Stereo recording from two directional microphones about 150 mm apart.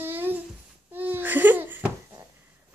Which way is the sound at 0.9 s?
10° right (ahead or behind).